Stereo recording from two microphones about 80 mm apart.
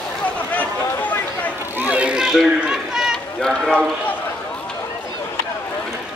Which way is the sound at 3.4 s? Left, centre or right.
Centre.